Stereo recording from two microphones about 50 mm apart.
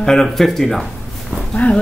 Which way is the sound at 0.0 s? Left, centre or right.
Centre.